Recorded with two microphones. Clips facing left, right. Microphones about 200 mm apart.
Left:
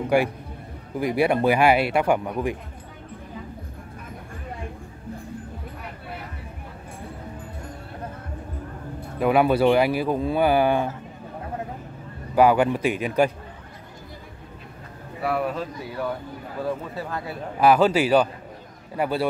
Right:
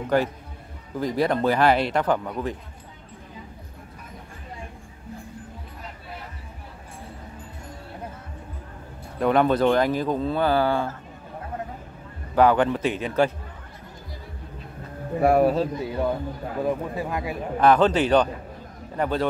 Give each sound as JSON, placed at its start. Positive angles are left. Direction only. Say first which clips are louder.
{"t": 0.1, "sound": "speech", "louder": "left 1 dB", "side_deg": 10}
{"t": 9.2, "sound": "speech", "louder": "left 1 dB", "side_deg": 10}
{"t": 12.4, "sound": "speech", "louder": "left 1 dB", "side_deg": 10}
{"t": 15.1, "sound": "speech", "louder": "right 7 dB", "side_deg": -45}
{"t": 15.8, "sound": "speech", "louder": "right 4 dB", "side_deg": -20}
{"t": 17.6, "sound": "speech", "louder": "left 1 dB", "side_deg": 10}